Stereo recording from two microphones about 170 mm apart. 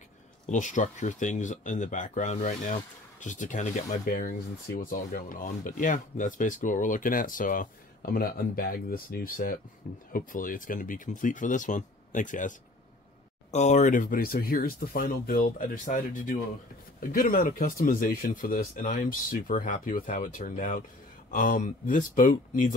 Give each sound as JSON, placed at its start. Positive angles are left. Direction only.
{"t": 0.5, "sound": "speech", "side_deg": 45}